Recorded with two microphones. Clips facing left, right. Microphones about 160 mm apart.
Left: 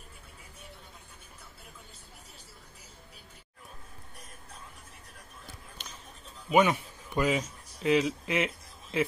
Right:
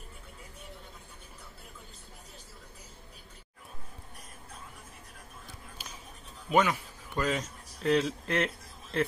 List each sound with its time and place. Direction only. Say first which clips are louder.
5.8 s whispering: right 1 dB; 5° right (ahead or behind)
6.5 s speech: left 2 dB; 15° left (ahead or behind)
7.2 s speech: left 3 dB; 5° left (ahead or behind)